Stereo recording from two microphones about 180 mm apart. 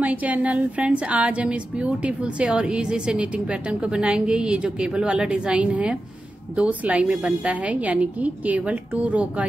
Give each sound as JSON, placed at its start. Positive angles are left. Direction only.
{"t": 0.0, "sound": "a woman's voice", "side_deg": -10}